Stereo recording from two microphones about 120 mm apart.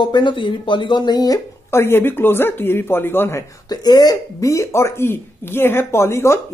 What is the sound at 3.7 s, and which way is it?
Speech, 35° left (ahead or behind).